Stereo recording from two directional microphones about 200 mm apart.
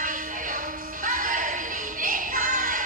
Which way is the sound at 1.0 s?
40° right (ahead or behind).